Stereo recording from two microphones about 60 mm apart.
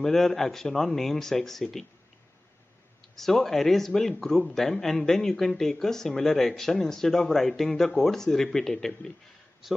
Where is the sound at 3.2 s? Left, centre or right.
Centre.